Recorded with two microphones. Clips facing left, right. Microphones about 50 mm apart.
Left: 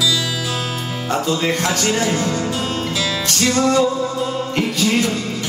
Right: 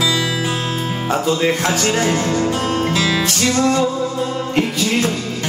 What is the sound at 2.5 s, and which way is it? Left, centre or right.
Music, right.